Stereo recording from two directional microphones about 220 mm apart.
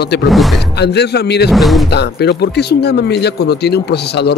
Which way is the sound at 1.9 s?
50° left (ahead or behind).